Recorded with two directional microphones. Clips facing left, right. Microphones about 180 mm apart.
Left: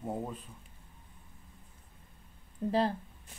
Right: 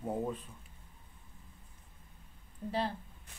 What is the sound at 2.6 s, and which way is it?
Speech, 40° left (ahead or behind).